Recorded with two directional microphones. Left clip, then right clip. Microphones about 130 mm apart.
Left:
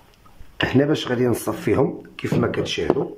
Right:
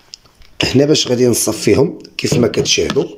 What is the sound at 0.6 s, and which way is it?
Speech, 15° right (ahead or behind).